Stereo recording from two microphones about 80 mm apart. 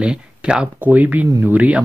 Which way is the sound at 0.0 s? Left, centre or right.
Centre.